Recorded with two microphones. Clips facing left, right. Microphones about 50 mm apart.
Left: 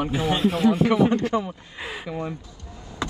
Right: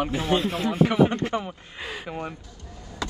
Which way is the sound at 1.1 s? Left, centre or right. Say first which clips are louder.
Left 4 dB; right.